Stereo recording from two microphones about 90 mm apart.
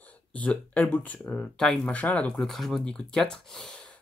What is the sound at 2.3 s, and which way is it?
Speech, 5° left (ahead or behind).